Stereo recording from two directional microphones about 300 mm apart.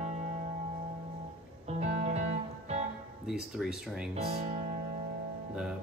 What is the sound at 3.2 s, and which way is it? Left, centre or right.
Speech, centre.